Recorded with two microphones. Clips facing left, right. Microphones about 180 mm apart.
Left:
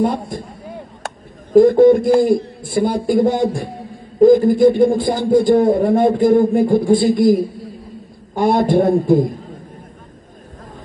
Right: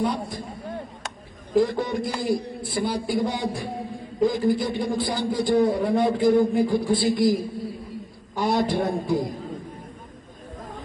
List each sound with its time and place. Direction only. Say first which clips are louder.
0.0 s a man's voice: left 7 dB; 50° left (ahead or behind)